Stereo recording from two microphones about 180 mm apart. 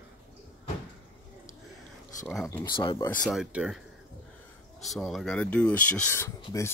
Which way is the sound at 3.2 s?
Centre (ahead or behind).